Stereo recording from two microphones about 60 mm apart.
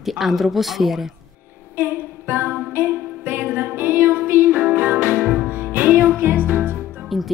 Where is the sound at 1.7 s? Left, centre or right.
Right.